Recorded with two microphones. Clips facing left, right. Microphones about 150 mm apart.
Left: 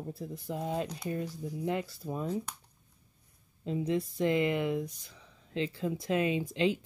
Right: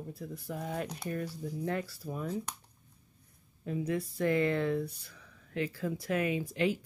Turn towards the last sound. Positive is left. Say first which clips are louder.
# left 1 dB
turn(degrees=20)  # may be behind; listen again after turning